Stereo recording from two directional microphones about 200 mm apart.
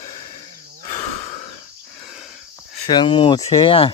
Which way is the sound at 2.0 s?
Centre (ahead or behind).